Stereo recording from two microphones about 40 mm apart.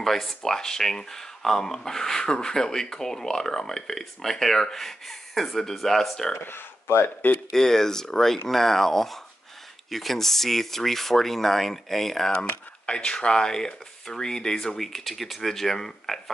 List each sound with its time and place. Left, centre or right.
0.0 s speech: centre
6.4 s speech: left
7.5 s speech: centre
12.3 s speech: left